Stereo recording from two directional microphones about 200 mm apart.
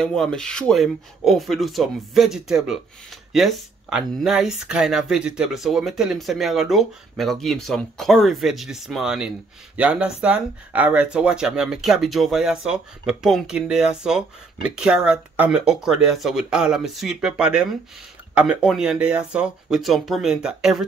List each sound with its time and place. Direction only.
0.0 s speech: 5° left (ahead or behind)